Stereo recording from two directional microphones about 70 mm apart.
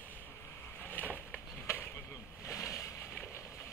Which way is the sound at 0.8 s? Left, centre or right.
Left.